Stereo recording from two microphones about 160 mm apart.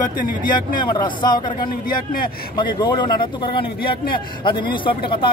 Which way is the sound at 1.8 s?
65° left (ahead or behind).